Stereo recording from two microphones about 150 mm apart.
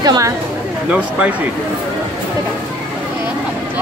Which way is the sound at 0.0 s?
25° right (ahead or behind).